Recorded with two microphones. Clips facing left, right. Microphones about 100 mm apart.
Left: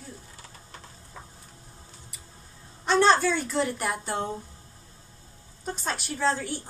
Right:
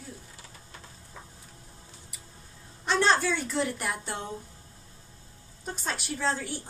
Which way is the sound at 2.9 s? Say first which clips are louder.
Left 4 dB; 35° left (ahead or behind).